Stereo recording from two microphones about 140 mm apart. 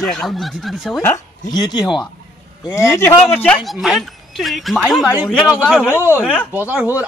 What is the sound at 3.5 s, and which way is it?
A man's voice, 5° right (ahead or behind).